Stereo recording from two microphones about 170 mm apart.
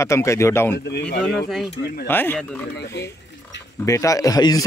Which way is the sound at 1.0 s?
5° left (ahead or behind).